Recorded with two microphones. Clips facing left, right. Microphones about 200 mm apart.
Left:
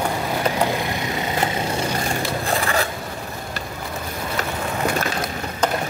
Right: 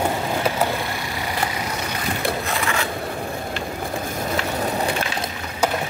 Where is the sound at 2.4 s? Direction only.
35° left (ahead or behind).